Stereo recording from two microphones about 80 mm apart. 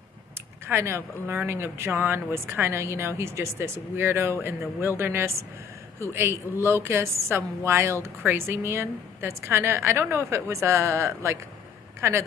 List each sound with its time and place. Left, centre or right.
0.7 s speech: right